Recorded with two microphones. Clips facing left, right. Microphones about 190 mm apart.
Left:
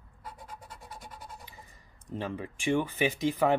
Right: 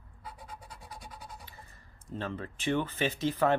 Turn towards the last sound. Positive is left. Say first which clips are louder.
# left 1 dB
turn(degrees=15)  # may be behind; listen again after turning